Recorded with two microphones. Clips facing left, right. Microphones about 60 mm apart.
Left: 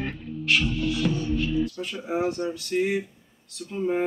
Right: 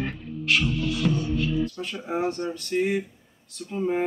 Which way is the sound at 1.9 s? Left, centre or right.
Centre.